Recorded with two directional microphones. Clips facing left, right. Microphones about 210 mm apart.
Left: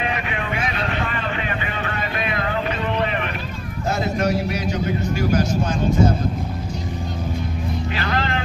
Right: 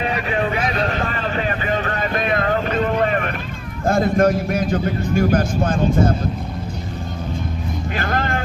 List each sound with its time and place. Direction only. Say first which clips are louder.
0.0 s vehicle: right 5 dB; 35° right (ahead or behind)
3.8 s a man's voice: right 6 dB; 50° right (ahead or behind)
7.9 s speech: right 3 dB; 50° right (ahead or behind)